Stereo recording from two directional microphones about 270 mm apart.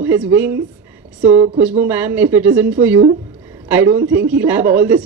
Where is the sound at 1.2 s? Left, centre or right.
Right.